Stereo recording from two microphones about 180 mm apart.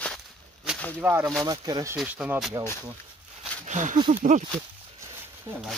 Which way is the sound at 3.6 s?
45° right (ahead or behind).